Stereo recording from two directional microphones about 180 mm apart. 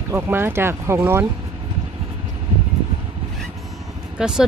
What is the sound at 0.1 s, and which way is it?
Speech, 15° right (ahead or behind).